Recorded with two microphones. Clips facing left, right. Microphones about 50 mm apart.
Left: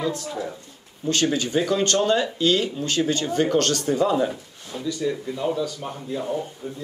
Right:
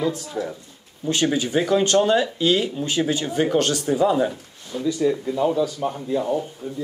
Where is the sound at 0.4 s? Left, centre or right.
Centre.